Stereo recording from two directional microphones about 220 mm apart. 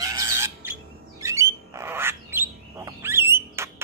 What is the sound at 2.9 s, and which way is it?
Rodents, 10° right (ahead or behind).